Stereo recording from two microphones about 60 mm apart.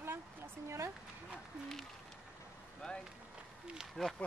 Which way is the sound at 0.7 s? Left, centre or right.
Right.